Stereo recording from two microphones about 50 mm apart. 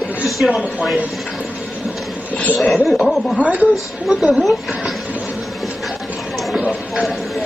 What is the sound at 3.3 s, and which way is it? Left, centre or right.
Speech, right.